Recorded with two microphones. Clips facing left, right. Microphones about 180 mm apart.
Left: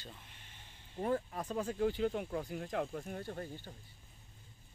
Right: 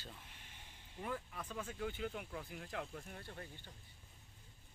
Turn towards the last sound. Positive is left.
turn(degrees=35)  # may be behind; listen again after turning